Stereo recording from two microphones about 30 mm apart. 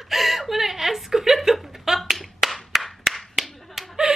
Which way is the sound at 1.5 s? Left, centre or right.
Centre.